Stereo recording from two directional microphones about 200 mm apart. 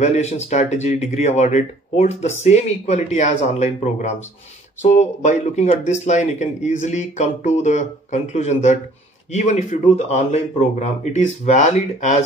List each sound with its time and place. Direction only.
0.0 s speech: 35° left (ahead or behind)